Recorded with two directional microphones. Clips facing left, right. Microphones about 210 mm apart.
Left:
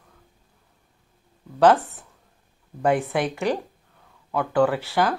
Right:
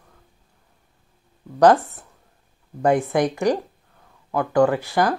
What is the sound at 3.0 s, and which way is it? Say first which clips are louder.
Speech: right 4 dB; 15° right (ahead or behind).